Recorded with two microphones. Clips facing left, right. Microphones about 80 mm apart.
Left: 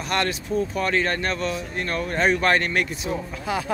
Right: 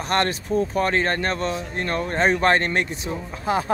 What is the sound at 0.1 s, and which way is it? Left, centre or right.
Speech, right.